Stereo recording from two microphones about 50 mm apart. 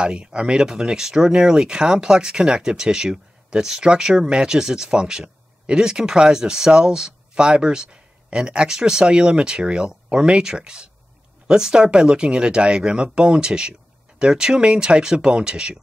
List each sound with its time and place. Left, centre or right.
0.0 s speech: centre